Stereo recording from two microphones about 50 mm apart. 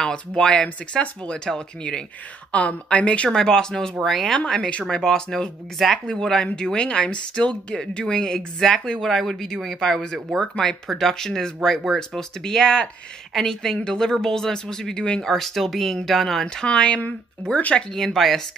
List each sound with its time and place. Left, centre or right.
0.0 s speech: centre
2.5 s a woman's voice: left
3.3 s speech: centre
10.5 s a woman's voice: centre
10.9 s speech: centre
16.6 s a woman's voice: left
17.7 s speech: centre